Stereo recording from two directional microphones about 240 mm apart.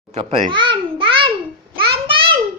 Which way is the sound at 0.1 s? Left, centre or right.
Right.